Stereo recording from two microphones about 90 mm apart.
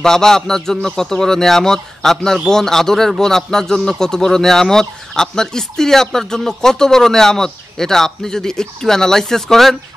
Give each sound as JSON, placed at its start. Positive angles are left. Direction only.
{"t": 0.0, "sound": "a man's voice", "side_deg": 5}